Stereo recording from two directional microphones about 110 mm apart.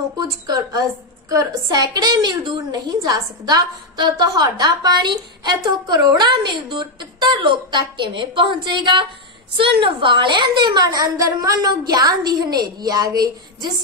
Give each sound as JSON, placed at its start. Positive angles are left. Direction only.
{"t": 0.2, "sound": "a woman's voice", "side_deg": -35}